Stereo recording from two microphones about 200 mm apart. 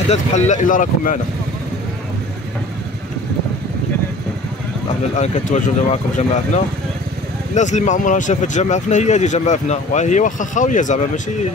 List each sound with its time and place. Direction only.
0.1 s speech: 35° left (ahead or behind)
5.1 s speech: 35° left (ahead or behind)